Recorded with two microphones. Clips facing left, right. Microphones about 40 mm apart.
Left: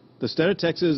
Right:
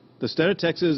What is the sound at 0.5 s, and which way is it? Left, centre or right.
Speech, right.